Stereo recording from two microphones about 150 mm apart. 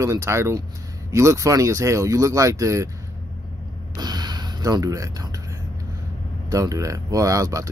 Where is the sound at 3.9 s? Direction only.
30° right (ahead or behind).